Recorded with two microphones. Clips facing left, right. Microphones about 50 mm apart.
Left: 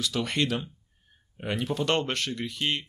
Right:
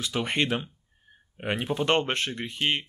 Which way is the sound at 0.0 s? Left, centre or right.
Right.